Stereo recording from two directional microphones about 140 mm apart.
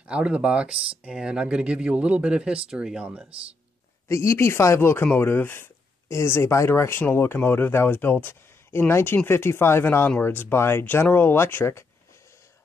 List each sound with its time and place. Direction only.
0.0 s speech: 10° right (ahead or behind)
4.1 s speech: 20° left (ahead or behind)